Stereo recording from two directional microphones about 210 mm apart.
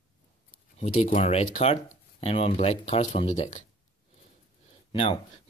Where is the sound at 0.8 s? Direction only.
30° left (ahead or behind).